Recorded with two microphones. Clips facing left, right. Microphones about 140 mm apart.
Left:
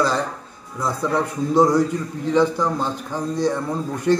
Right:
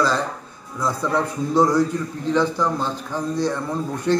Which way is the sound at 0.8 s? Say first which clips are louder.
Even; 15° left (ahead or behind).